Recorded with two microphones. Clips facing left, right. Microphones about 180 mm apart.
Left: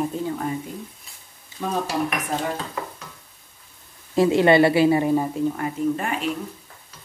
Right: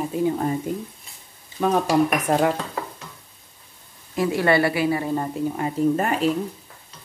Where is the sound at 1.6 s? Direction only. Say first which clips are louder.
Right 6 dB; 60° right (ahead or behind).